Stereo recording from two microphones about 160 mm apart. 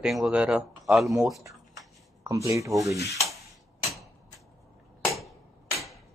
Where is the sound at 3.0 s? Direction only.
20° left (ahead or behind).